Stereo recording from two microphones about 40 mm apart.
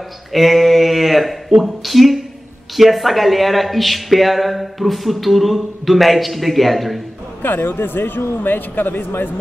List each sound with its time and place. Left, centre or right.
0.3 s a sound: centre
1.6 s speech: centre
7.4 s a man's voice: left